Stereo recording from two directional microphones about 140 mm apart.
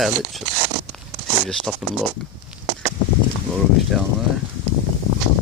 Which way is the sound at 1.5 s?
5° left (ahead or behind).